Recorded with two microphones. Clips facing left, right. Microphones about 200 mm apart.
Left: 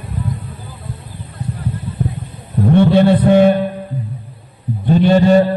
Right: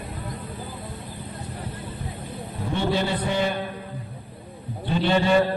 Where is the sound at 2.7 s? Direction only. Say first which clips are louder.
Left 13 dB; 60° left (ahead or behind).